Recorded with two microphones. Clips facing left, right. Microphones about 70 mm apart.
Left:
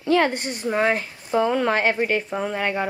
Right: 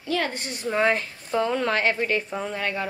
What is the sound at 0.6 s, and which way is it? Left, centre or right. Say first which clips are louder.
Speech: left 1 dB; centre.